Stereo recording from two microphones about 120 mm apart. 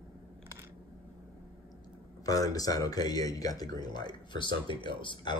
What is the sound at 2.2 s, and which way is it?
Speech, 30° left (ahead or behind).